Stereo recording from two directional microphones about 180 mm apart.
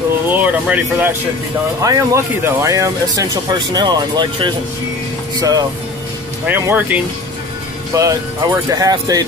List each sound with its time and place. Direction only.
0.3 s speech: 10° right (ahead or behind)
6.4 s speech: 10° right (ahead or behind)